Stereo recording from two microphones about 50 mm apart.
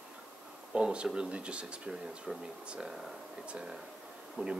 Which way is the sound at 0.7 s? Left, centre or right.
Right.